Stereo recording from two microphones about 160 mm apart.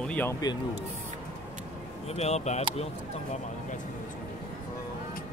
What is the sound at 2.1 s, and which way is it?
Speech, 40° left (ahead or behind).